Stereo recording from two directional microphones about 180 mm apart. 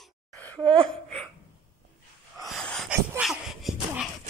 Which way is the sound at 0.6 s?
30° right (ahead or behind).